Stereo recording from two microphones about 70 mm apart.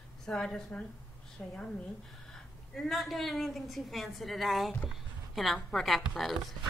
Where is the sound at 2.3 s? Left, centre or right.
Centre.